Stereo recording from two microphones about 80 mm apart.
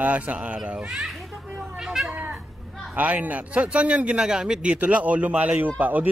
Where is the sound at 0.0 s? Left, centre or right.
Centre.